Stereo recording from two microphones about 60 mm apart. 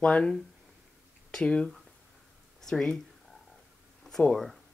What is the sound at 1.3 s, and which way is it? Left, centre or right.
Speech, centre.